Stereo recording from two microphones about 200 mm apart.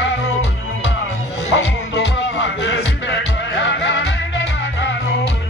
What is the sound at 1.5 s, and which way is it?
Music, 60° left (ahead or behind).